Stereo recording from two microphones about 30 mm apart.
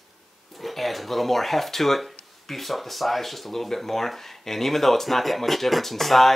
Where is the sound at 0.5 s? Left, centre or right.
Centre.